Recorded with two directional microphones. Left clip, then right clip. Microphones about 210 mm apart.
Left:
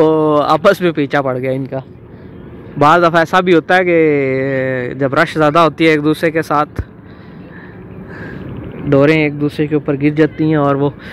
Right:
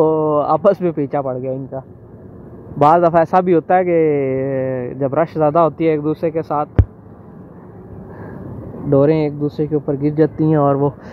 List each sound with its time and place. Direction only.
0.0 s a sound: 15° left (ahead or behind)
0.7 s speech: centre (ahead or behind)
1.2 s speech: 25° left (ahead or behind)
1.5 s speech: 50° left (ahead or behind)
2.8 s speech: 5° left (ahead or behind)
6.1 s speech: 5° left (ahead or behind)
6.4 s speech: 20° left (ahead or behind)
9.0 s speech: 15° right (ahead or behind)